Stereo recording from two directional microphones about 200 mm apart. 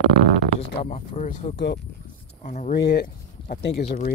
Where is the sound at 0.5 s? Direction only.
35° left (ahead or behind).